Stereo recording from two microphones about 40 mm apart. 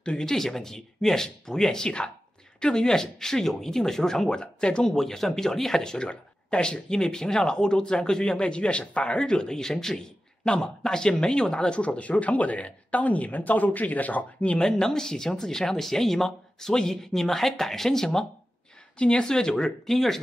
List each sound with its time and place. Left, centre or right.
0.2 s speech: centre
4.8 s speech: centre; by 14.6 s left
14.6 s speech: centre